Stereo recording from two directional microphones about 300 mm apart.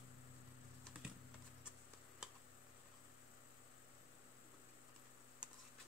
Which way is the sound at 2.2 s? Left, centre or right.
Centre.